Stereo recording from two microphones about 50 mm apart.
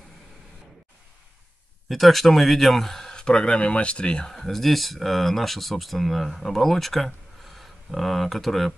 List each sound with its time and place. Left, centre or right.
1.9 s a man's voice: centre
4.3 s speech: centre